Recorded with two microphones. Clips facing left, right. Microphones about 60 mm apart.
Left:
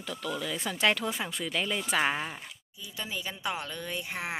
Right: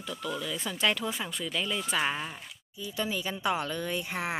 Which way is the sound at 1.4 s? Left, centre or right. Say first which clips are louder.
Left 1 dB; left.